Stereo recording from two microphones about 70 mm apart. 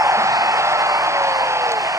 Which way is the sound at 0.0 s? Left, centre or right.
Right.